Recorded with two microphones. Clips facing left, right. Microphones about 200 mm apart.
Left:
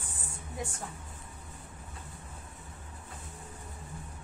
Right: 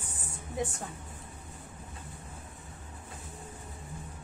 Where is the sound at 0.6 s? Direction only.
20° right (ahead or behind).